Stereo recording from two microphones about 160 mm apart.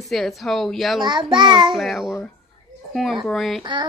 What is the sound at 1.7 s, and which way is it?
Speech, centre (ahead or behind).